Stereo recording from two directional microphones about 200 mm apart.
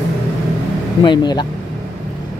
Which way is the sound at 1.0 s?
20° left (ahead or behind).